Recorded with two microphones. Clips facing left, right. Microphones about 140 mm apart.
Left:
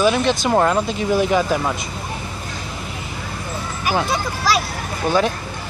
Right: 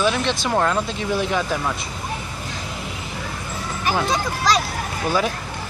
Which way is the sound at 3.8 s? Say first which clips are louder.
Left 1 dB; 5° left (ahead or behind).